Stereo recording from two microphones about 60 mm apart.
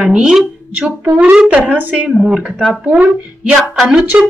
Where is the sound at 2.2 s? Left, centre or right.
Centre.